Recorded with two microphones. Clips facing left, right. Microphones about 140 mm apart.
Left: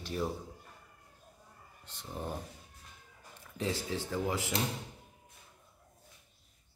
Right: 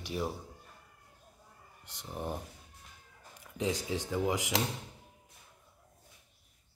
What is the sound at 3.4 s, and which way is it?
Speech, 15° right (ahead or behind).